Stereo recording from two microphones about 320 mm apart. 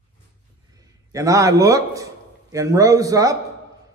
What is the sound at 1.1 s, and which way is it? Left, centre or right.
A man's voice, centre.